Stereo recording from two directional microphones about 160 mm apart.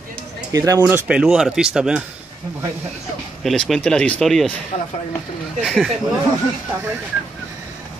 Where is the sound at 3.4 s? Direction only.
5° left (ahead or behind).